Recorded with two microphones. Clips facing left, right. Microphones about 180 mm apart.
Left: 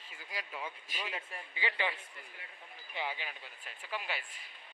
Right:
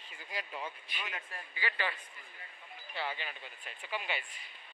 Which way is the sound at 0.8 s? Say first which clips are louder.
Left 2 dB; 35° left (ahead or behind).